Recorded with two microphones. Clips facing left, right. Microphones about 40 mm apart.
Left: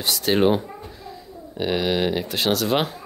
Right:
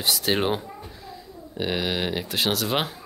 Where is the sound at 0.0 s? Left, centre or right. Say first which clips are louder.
Left 4 dB; centre.